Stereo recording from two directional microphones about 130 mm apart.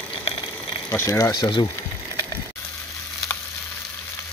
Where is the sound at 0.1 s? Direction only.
40° left (ahead or behind).